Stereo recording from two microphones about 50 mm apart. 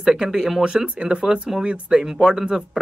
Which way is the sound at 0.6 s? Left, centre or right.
Centre.